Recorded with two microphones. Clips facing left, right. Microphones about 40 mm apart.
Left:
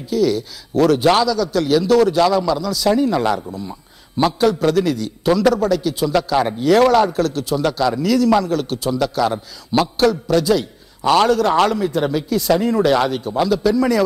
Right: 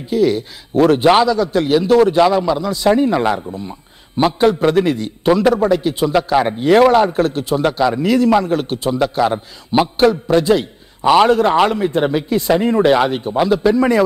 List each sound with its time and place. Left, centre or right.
0.1 s a man's voice: right